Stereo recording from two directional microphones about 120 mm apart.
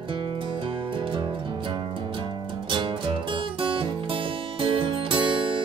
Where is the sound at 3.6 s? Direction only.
45° right (ahead or behind).